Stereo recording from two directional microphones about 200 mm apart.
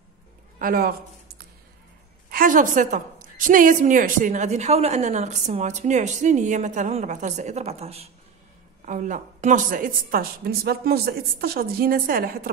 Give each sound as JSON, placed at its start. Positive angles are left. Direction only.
{"t": 0.6, "sound": "a man's voice", "side_deg": -45}
{"t": 2.3, "sound": "a woman's voice", "side_deg": -40}